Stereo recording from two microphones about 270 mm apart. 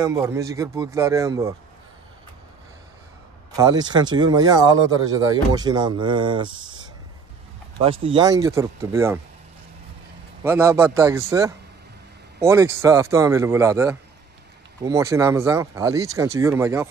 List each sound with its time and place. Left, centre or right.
0.0 s speech: centre
3.5 s speech: centre
8.0 s speech: centre
10.4 s speech: centre